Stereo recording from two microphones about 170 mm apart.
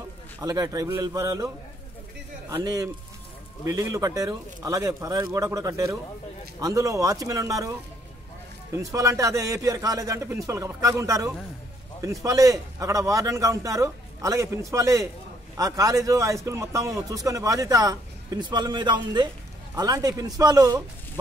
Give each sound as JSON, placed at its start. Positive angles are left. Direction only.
{"t": 0.4, "sound": "a man's voice", "side_deg": -20}
{"t": 2.5, "sound": "a man's voice", "side_deg": -20}
{"t": 8.7, "sound": "a man's voice", "side_deg": -20}